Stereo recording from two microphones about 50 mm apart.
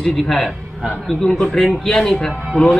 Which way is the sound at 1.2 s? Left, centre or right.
Centre.